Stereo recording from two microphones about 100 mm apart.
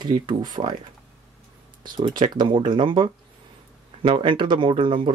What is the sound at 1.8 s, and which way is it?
Speech, 45° right (ahead or behind).